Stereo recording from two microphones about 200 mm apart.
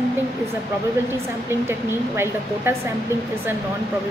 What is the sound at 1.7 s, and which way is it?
Speech, 10° right (ahead or behind).